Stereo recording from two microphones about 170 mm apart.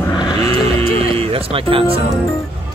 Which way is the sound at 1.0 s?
35° right (ahead or behind).